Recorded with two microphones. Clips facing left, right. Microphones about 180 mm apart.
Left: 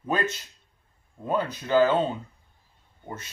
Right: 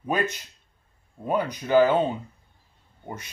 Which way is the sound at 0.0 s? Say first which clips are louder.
Right 1 dB; 15° right (ahead or behind).